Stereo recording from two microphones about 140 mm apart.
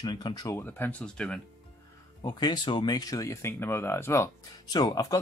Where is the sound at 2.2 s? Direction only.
30° left (ahead or behind).